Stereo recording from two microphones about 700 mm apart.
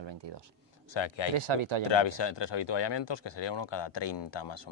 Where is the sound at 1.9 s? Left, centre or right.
Left.